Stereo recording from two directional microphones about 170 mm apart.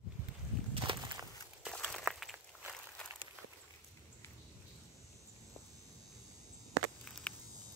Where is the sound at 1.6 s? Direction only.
5° left (ahead or behind).